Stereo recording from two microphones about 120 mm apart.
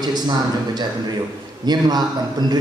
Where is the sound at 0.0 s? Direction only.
35° right (ahead or behind).